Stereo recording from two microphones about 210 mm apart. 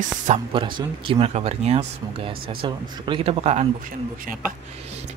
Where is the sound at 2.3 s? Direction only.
45° right (ahead or behind).